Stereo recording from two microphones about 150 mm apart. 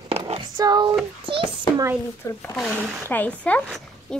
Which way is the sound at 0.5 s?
25° right (ahead or behind).